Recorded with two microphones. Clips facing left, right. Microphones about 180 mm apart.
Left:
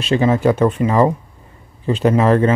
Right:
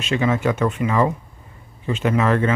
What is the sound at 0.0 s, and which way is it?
Speech, 35° left (ahead or behind).